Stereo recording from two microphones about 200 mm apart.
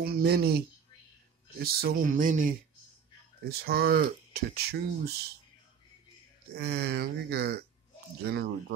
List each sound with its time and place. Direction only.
0.0 s speech: 50° right (ahead or behind)
3.4 s speech: 50° right (ahead or behind)
6.5 s speech: 55° right (ahead or behind)